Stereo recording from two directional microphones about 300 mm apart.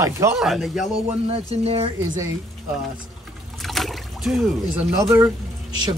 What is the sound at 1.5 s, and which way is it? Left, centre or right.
Speech, centre.